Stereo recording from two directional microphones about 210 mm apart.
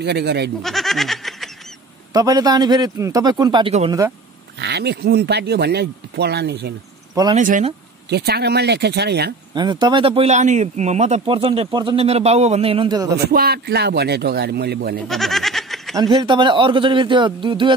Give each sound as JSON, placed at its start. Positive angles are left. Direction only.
{"t": 0.0, "sound": "speech", "side_deg": -50}
{"t": 0.6, "sound": "goat", "side_deg": 0}
{"t": 2.1, "sound": "speech", "side_deg": -20}
{"t": 4.6, "sound": "speech", "side_deg": -50}
{"t": 7.3, "sound": "speech", "side_deg": -35}
{"t": 8.1, "sound": "speech", "side_deg": -50}
{"t": 9.5, "sound": "speech", "side_deg": -20}
{"t": 13.3, "sound": "speech", "side_deg": -45}
{"t": 15.0, "sound": "a sound", "side_deg": 0}
{"t": 16.0, "sound": "speech", "side_deg": -20}